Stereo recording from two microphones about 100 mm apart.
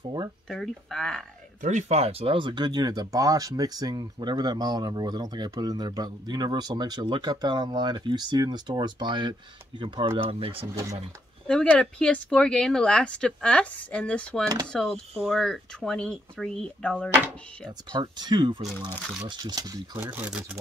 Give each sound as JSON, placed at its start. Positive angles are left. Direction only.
{"t": 0.5, "sound": "speech", "side_deg": 5}
{"t": 1.9, "sound": "speech", "side_deg": -90}
{"t": 10.1, "sound": "speech", "side_deg": -65}
{"t": 11.4, "sound": "speech", "side_deg": 10}
{"t": 17.9, "sound": "speech", "side_deg": -45}
{"t": 20.0, "sound": "speech", "side_deg": -20}